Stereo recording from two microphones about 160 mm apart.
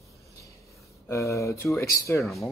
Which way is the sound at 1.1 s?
20° left (ahead or behind).